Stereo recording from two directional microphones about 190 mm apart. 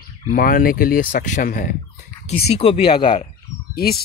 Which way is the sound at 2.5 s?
30° left (ahead or behind).